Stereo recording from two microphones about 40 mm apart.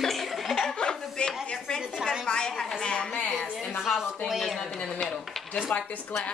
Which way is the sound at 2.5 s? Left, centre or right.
Centre.